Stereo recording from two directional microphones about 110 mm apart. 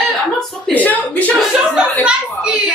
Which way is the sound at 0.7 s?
15° left (ahead or behind).